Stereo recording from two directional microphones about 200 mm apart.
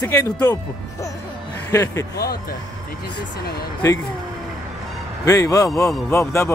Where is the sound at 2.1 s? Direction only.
50° left (ahead or behind).